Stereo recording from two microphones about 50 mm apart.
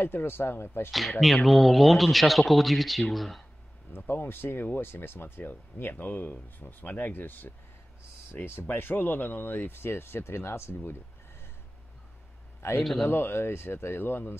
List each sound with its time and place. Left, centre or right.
0.0 s speech: left
1.2 s speech: centre
4.1 s speech: left
10.7 s a sound: left
12.6 s a man's voice: left
13.1 s speech: left